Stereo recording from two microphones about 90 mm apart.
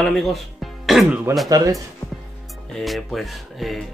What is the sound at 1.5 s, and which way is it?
Speech, 40° right (ahead or behind).